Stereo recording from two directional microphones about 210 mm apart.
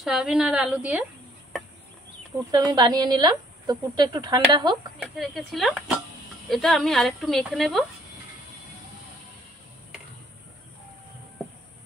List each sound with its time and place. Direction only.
0.0 s speech: centre (ahead or behind)
2.5 s a woman's voice: 20° right (ahead or behind)
5.0 s speech: centre (ahead or behind)